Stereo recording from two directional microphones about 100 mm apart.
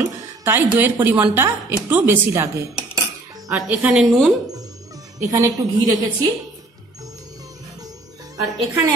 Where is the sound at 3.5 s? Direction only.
15° right (ahead or behind).